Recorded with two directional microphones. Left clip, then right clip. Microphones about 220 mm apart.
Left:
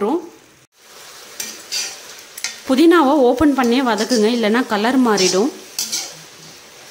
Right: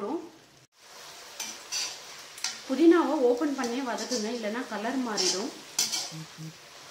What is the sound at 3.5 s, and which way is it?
A woman's voice, 50° left (ahead or behind).